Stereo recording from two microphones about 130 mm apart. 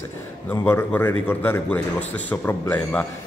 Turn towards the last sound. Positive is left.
turn(degrees=10)  # may be behind; listen again after turning